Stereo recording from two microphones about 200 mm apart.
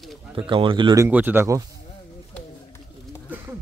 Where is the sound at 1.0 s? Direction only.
10° right (ahead or behind).